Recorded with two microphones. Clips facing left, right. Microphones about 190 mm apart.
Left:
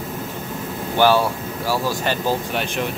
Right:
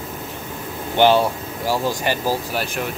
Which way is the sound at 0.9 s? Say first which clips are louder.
Right 1 dB; 20° right (ahead or behind).